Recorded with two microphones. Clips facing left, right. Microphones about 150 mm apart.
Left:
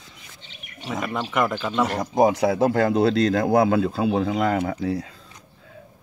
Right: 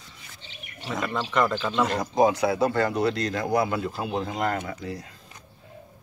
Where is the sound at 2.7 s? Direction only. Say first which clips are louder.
Left 5 dB; 90° left; by 5.1 s 70° left (ahead or behind).